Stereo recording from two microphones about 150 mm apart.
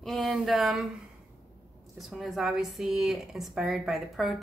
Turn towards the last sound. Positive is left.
turn(degrees=0)  # may be behind; listen again after turning